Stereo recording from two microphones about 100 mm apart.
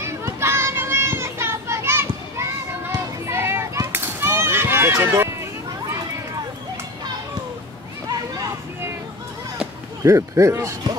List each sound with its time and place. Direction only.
0.0 s children playing: 25° right (ahead or behind)
5.2 s a sound: 25° right (ahead or behind)
10.0 s a man's voice: 30° right (ahead or behind)